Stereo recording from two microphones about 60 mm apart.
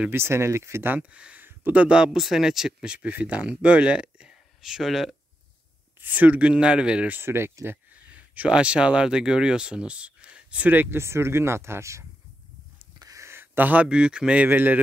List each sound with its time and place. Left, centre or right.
0.1 s speech: right
1.1 s speech: centre
1.4 s a sound: right
1.8 s speech: centre
2.1 s speech: centre
5.9 s speech: right
7.1 s speech: right
7.6 s speech: right
11.0 s speech: right
13.2 s a sound: right
13.6 s speech: right
13.8 s speech: centre